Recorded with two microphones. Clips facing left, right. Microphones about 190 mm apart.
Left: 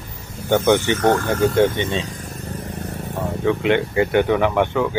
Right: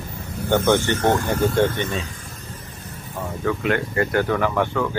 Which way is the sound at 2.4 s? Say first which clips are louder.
Left 9 dB; 65° left (ahead or behind).